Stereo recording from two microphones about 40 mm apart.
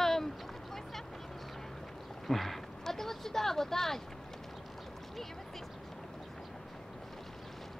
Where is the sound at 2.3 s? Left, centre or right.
Centre.